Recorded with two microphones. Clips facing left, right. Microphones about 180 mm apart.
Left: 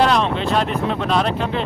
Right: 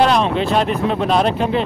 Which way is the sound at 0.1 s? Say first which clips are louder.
Right 2 dB; 10° right (ahead or behind).